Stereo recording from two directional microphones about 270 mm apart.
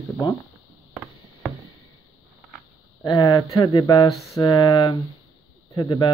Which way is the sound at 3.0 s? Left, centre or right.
Centre.